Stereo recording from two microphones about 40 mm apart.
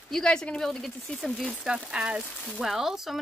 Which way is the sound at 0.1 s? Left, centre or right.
Centre.